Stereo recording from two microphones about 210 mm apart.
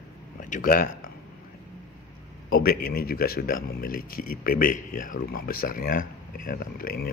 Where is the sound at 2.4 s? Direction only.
45° left (ahead or behind).